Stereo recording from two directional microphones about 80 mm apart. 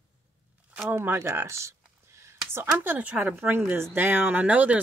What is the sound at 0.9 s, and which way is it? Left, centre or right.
Speech, right.